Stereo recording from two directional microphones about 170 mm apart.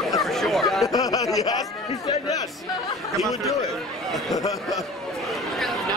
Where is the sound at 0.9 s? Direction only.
20° left (ahead or behind).